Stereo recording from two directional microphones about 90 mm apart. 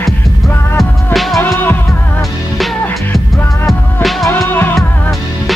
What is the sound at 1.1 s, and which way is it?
Music, centre (ahead or behind).